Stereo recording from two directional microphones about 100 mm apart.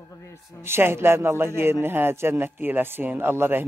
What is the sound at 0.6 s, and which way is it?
Speech, 25° right (ahead or behind).